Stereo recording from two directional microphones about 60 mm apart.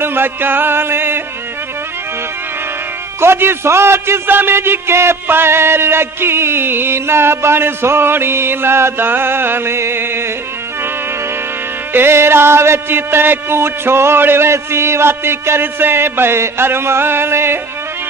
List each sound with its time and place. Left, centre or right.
0.0 s a man's voice: right
3.2 s a man's voice: right
11.9 s music: right